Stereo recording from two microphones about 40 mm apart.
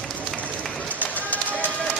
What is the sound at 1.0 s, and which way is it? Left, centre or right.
Run, left.